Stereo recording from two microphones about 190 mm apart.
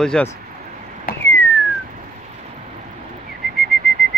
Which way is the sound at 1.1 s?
50° left (ahead or behind).